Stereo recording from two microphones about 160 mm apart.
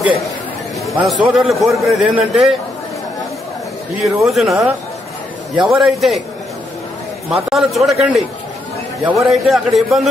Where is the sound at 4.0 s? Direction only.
Centre (ahead or behind).